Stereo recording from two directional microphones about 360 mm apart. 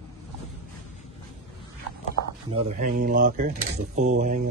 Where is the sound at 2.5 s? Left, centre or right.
Right.